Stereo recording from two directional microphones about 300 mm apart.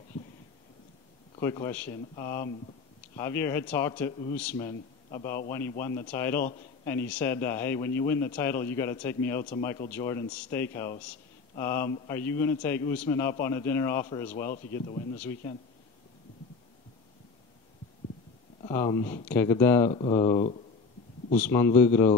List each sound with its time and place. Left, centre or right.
1.3 s a man's voice: centre
18.6 s a man's voice: centre
19.9 s speech: centre
21.4 s a man's voice: centre